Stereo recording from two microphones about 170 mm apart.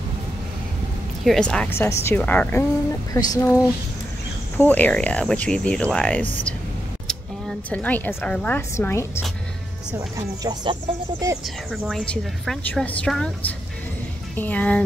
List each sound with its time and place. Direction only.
1.2 s speech: 5° left (ahead or behind)
3.1 s speech: 25° left (ahead or behind)
4.6 s a woman's voice: 10° left (ahead or behind)
9.9 s speech: 20° right (ahead or behind)
11.4 s a woman's voice: centre (ahead or behind)